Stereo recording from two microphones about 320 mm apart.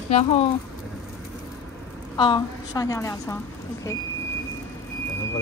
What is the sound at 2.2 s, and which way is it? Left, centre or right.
Speech, centre.